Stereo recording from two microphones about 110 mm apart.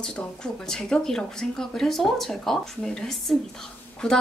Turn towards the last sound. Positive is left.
turn(degrees=5)  # may be behind; listen again after turning